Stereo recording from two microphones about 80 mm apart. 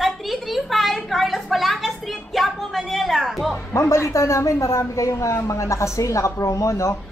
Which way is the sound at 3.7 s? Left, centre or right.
Left.